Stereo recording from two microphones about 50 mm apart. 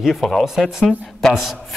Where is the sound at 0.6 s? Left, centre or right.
Centre.